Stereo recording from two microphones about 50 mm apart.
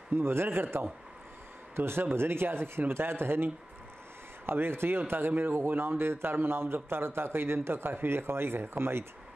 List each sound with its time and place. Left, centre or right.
0.1 s speech: right
1.9 s speech: right
4.5 s speech: right